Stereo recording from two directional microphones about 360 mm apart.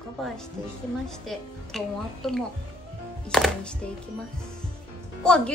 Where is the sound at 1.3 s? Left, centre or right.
Centre.